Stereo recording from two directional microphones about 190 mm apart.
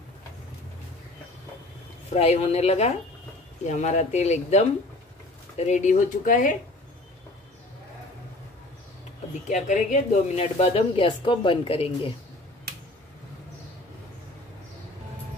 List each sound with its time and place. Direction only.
2.1 s a woman's voice: 30° left (ahead or behind)
9.5 s a woman's voice: 40° left (ahead or behind)